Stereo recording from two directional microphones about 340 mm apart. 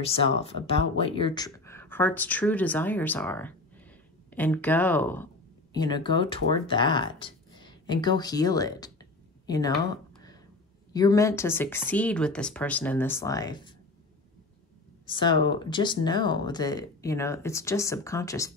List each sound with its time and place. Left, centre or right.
0.0 s speech: centre
9.5 s a sound: centre
10.9 s speech: centre
15.0 s speech: centre